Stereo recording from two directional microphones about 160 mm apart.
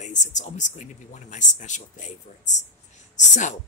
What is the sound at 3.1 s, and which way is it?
Speech, 50° left (ahead or behind).